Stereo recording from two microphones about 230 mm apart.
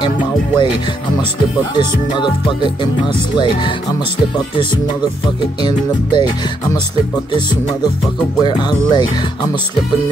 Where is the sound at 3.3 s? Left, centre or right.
Centre.